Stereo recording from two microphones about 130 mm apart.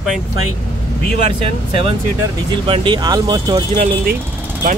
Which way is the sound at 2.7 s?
35° right (ahead or behind).